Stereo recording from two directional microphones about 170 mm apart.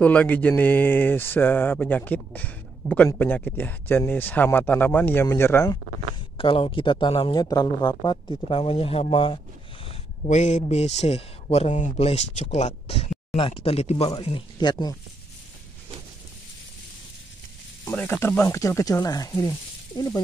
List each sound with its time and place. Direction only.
0.0 s speech: 10° left (ahead or behind)
6.3 s speech: 30° left (ahead or behind)
10.2 s speech: 45° left (ahead or behind); by 15.0 s 25° left (ahead or behind)
17.8 s speech: 15° left (ahead or behind)